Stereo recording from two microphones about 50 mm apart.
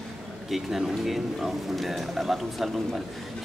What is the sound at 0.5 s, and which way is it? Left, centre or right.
A man's voice, centre.